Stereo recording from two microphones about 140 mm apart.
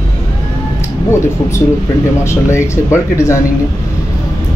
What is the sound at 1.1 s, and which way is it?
Speech, 20° left (ahead or behind).